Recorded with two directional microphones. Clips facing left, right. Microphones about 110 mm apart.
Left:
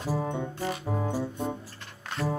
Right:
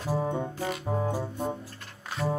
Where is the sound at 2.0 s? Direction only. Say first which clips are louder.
Right 1 dB; centre (ahead or behind).